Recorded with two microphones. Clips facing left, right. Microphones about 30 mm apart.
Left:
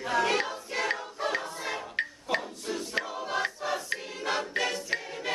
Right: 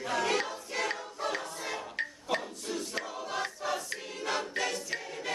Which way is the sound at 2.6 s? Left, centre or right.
Centre.